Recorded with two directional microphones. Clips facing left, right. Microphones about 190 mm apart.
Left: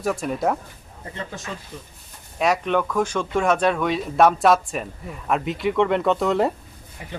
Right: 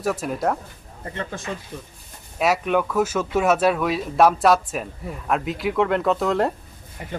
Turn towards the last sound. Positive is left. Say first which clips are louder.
# left 1 dB
turn(degrees=0)  # may be behind; listen again after turning